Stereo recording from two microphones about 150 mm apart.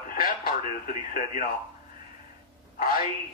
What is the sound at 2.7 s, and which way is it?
Speech, 70° left (ahead or behind).